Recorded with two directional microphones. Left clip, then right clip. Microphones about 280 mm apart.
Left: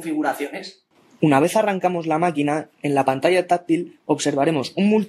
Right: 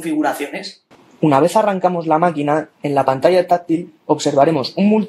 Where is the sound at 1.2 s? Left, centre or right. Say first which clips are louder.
Right 4 dB; left.